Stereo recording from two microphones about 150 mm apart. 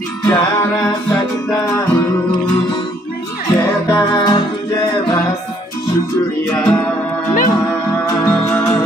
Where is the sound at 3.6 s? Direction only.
25° left (ahead or behind).